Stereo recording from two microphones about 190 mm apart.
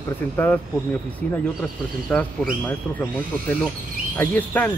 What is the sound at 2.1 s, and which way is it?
Speech, 10° left (ahead or behind).